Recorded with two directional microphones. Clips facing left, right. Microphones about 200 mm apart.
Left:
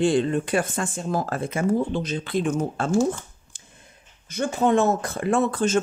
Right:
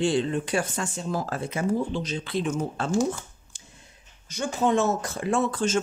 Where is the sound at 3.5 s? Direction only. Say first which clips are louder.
Right 3 dB; 55° left (ahead or behind).